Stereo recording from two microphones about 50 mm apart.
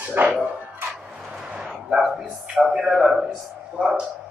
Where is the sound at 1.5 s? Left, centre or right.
Centre.